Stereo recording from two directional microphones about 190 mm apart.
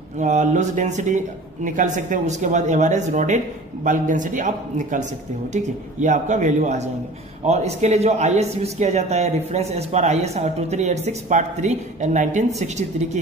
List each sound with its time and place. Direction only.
0.2 s a man's voice: 40° right (ahead or behind)